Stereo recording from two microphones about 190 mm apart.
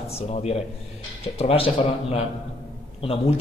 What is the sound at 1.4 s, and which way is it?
A man's voice, 30° left (ahead or behind).